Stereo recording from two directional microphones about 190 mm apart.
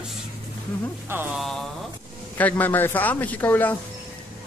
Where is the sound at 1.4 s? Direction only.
Centre (ahead or behind).